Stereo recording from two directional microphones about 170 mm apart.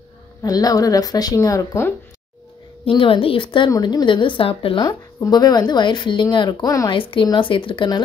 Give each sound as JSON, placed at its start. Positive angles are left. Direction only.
{"t": 0.4, "sound": "a woman's voice", "side_deg": 20}
{"t": 2.8, "sound": "a woman's voice", "side_deg": 30}